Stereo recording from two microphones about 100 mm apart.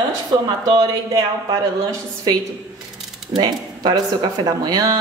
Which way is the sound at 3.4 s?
45° right (ahead or behind).